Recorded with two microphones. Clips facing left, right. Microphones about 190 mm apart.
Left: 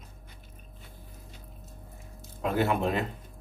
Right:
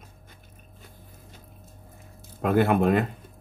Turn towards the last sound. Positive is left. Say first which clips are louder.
# right 6 dB
turn(degrees=-55)  # may be behind; listen again after turning